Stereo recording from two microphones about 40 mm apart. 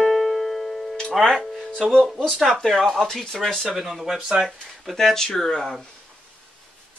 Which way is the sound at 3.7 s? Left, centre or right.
Centre.